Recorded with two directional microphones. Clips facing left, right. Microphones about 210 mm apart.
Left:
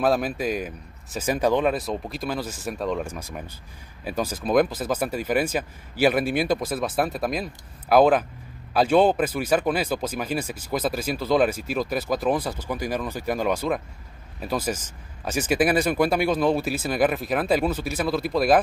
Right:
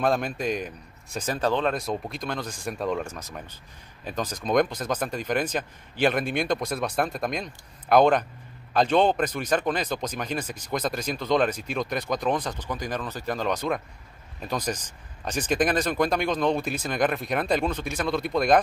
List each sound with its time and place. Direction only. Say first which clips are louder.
0.0 s speech: left 2 dB; 5° left (ahead or behind)